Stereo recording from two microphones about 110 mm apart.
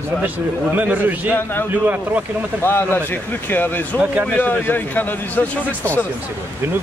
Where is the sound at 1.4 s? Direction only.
20° left (ahead or behind).